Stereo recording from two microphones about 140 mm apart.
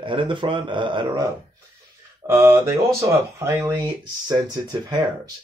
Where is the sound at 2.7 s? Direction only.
20° right (ahead or behind).